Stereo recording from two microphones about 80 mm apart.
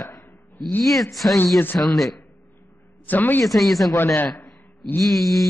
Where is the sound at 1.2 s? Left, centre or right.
Centre.